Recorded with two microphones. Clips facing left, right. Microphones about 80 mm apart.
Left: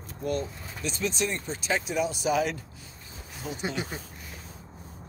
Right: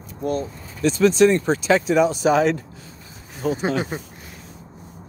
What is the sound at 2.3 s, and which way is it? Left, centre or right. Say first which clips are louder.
Speech: right 9 dB; right.